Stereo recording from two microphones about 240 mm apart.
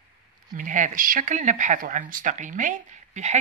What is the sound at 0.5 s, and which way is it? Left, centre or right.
Speech, right.